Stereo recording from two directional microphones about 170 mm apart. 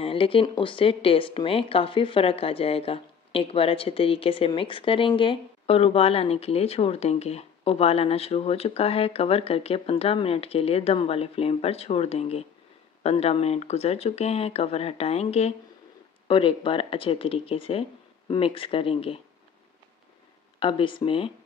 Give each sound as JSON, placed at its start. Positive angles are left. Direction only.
{"t": 0.0, "sound": "speech", "side_deg": 30}
{"t": 20.5, "sound": "speech", "side_deg": 30}